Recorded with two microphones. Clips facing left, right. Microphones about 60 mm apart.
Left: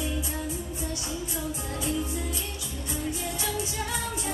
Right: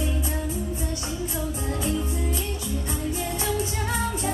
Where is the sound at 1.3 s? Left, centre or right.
Right.